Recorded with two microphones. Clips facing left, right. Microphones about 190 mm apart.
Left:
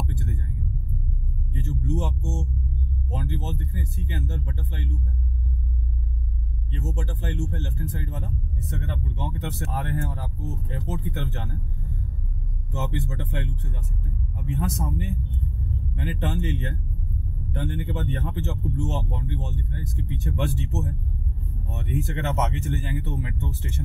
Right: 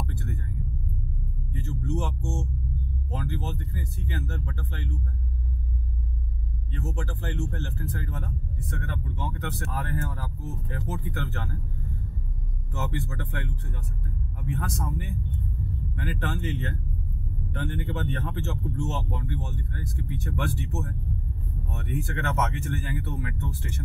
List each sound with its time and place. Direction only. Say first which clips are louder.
0.0 s a sound: left 2 dB; 20° left (ahead or behind)
1.5 s music: left 2 dB; 20° left (ahead or behind)
3.1 s speech: left 1 dB; 20° left (ahead or behind)
6.7 s speech: left 1 dB; 20° left (ahead or behind)
12.7 s speech: left 2 dB; 20° left (ahead or behind)